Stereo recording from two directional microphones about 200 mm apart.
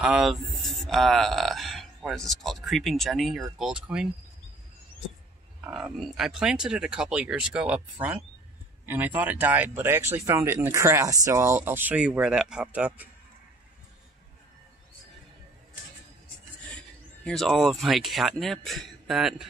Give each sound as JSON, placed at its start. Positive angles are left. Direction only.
{"t": 0.0, "sound": "speech", "side_deg": 0}
{"t": 5.6, "sound": "speech", "side_deg": 0}
{"t": 17.2, "sound": "speech", "side_deg": 0}